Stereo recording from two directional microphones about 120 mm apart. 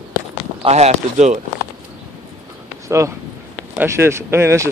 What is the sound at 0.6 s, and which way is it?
Speech, 65° right (ahead or behind).